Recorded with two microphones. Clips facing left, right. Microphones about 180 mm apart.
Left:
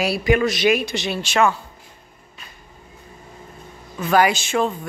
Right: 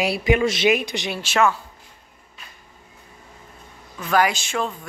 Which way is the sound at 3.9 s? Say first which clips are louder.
Left 3 dB; 5° left (ahead or behind).